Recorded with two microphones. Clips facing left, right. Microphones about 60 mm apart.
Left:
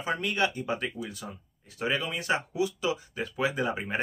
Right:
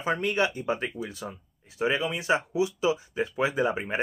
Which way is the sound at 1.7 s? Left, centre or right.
Centre.